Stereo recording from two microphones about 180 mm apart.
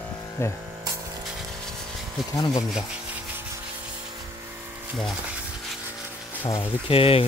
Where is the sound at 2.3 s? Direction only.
20° left (ahead or behind).